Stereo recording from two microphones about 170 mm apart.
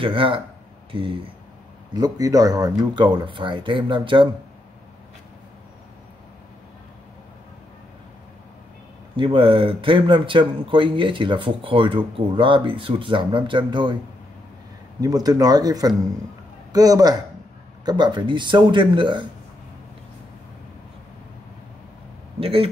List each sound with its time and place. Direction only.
0.0 s speech: 30° right (ahead or behind)
2.0 s speech: 20° right (ahead or behind)
9.1 s speech: 30° right (ahead or behind)
15.0 s speech: 20° right (ahead or behind)
22.4 s speech: 35° right (ahead or behind)